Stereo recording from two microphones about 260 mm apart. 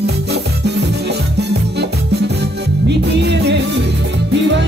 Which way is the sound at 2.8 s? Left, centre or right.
Right.